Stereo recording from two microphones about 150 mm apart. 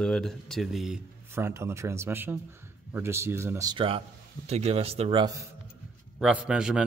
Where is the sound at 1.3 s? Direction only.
15° right (ahead or behind).